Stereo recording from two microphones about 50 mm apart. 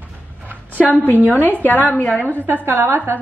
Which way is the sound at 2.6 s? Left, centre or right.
Right.